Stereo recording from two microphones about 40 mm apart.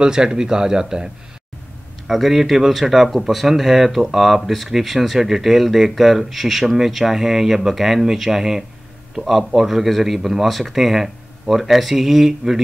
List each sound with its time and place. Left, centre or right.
0.0 s speech: centre
2.0 s speech: centre